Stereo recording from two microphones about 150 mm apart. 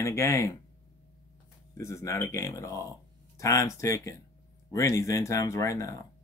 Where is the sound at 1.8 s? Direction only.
20° left (ahead or behind).